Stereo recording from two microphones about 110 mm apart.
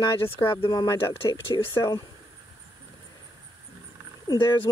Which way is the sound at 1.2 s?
55° left (ahead or behind).